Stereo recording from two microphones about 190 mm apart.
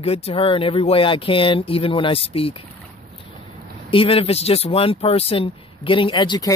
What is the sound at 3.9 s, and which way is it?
Speech, 30° left (ahead or behind).